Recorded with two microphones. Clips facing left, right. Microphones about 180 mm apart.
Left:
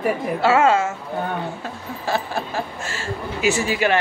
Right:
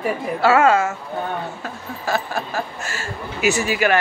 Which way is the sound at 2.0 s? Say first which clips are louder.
Even; 30° left (ahead or behind).